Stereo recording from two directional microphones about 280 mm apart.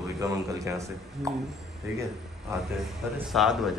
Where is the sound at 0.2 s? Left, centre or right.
Centre.